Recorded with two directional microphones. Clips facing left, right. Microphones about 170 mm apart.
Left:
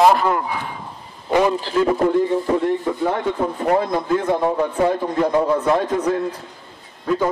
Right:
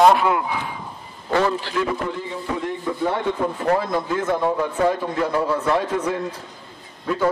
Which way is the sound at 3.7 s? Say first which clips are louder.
Left 3 dB; 20° left (ahead or behind).